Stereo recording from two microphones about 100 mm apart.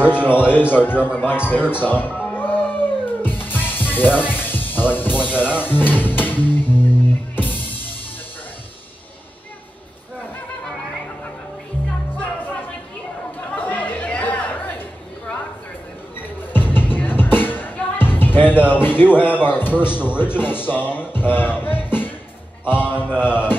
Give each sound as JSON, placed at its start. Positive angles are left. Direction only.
{"t": 0.0, "sound": "a man's voice", "side_deg": 20}
{"t": 2.2, "sound": "music", "side_deg": 20}
{"t": 13.6, "sound": "chatter", "side_deg": 15}
{"t": 16.2, "sound": "music", "side_deg": 20}
{"t": 19.1, "sound": "a man's voice", "side_deg": 20}
{"t": 21.3, "sound": "music", "side_deg": 20}
{"t": 22.7, "sound": "a man's voice", "side_deg": 20}
{"t": 23.1, "sound": "mantra", "side_deg": -10}